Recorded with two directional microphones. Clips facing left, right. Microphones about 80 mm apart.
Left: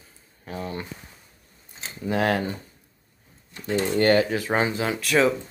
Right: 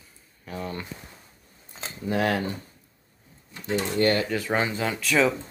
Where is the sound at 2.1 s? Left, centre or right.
Left.